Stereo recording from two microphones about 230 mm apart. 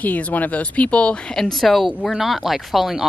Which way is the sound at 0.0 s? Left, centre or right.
Centre.